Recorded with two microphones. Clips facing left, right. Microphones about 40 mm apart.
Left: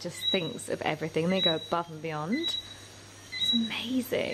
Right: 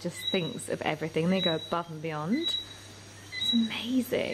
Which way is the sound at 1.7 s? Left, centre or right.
Centre.